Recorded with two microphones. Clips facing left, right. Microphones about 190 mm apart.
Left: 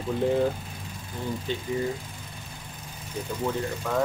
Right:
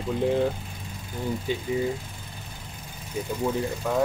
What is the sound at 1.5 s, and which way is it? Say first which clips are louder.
Speech: right 3 dB; 10° right (ahead or behind).